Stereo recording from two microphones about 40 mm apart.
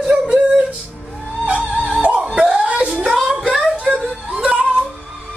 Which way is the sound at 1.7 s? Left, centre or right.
Left.